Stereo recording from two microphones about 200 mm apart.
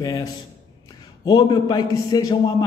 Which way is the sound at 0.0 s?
20° left (ahead or behind).